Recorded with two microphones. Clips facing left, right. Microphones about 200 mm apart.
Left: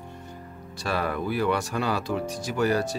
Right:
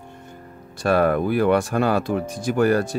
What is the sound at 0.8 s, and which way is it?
Speech, 55° right (ahead or behind).